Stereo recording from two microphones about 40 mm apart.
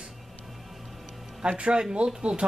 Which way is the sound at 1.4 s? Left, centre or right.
Right.